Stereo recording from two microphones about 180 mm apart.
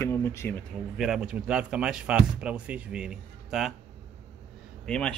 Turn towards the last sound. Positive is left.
turn(degrees=5)  # may be behind; listen again after turning